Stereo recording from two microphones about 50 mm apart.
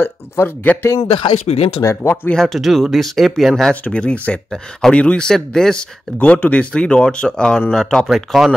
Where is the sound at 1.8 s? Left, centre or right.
Left.